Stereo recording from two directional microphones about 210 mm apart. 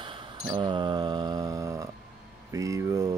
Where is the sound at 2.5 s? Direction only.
15° right (ahead or behind).